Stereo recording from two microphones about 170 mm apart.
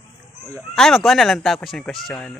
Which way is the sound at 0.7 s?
Centre (ahead or behind).